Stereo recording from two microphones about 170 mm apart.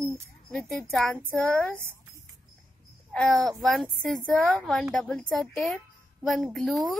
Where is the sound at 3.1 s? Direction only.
5° left (ahead or behind).